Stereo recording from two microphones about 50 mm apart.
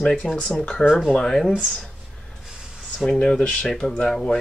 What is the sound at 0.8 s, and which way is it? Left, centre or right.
Speech, centre.